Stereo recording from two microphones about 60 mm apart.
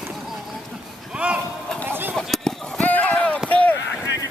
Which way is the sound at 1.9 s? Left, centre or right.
Right.